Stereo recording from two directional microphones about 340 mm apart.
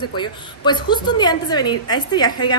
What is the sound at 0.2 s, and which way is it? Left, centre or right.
A woman's voice, centre.